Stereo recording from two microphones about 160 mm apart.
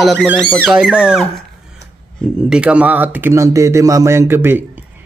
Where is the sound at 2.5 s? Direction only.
5° right (ahead or behind).